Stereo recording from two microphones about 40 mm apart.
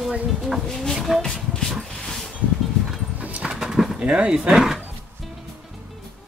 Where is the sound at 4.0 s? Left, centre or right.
Right.